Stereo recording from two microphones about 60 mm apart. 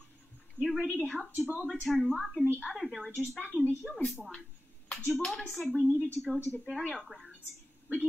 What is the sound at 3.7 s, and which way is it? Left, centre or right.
Speech, right.